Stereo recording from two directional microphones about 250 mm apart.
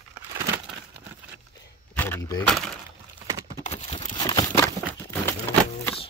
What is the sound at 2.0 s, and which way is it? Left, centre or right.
Speech, centre.